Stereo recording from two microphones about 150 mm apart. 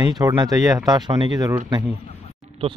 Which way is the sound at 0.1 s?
25° right (ahead or behind).